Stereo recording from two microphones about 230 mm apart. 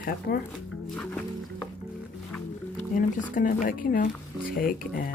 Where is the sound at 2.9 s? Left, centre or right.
Left.